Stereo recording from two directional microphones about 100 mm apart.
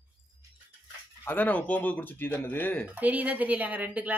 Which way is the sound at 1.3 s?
15° left (ahead or behind).